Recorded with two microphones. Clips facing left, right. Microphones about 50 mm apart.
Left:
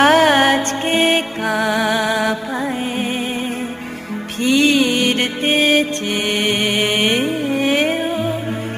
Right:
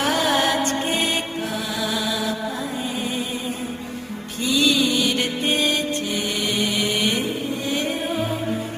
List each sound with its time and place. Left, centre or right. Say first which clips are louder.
0.0 s music: left 8 dB; left
1.5 s music: left 12 dB; left
4.4 s music: left 5 dB; left